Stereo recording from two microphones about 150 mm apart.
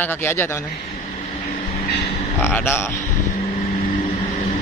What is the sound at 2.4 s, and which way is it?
Speech, 15° left (ahead or behind).